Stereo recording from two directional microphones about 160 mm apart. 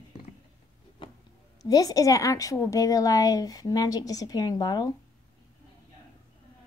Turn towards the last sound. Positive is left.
turn(degrees=25)  # may be behind; listen again after turning